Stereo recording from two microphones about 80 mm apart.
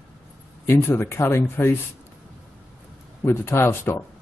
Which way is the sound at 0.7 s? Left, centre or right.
Left.